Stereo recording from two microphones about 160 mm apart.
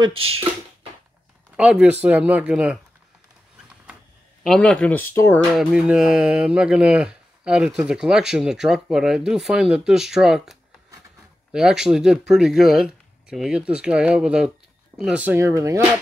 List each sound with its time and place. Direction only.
0.0 s speech: 35° right (ahead or behind)
1.6 s speech: 5° right (ahead or behind)
4.4 s speech: 5° left (ahead or behind)
5.6 s speech: 5° right (ahead or behind)